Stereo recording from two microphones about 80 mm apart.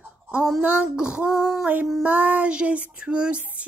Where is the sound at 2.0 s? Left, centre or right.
Right.